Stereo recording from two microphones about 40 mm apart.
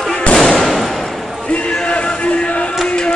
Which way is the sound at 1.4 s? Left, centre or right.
Left.